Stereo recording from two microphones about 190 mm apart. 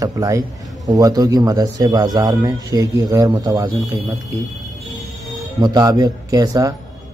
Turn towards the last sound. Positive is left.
turn(degrees=-20)  # may be behind; listen again after turning